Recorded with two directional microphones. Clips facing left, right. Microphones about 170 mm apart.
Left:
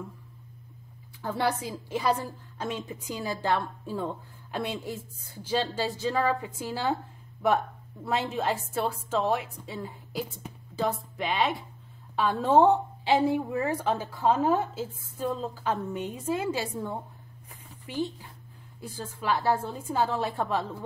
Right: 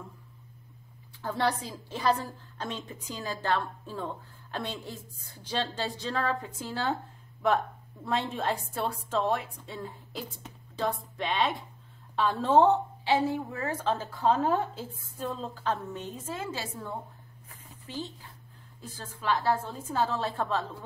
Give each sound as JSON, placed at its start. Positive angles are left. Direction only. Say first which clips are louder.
{"t": 1.2, "sound": "a woman's voice", "louder": "left 1 dB", "side_deg": 10}